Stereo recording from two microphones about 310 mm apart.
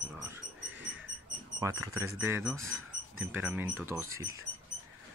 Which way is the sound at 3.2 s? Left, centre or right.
Centre.